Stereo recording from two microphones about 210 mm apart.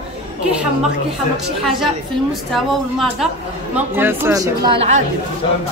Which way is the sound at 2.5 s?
Centre (ahead or behind).